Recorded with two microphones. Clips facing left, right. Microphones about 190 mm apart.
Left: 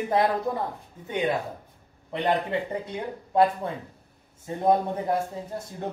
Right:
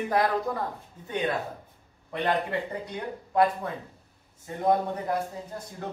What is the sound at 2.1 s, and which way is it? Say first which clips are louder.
Speech: left 2 dB; 20° left (ahead or behind).